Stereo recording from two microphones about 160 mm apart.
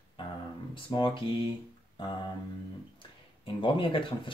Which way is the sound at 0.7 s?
30° left (ahead or behind).